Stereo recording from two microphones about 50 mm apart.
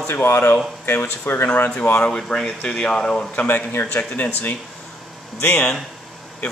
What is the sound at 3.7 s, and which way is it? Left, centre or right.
Speech, left.